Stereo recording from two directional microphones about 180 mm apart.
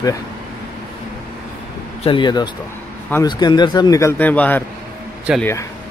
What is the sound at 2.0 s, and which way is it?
Speech, 25° left (ahead or behind).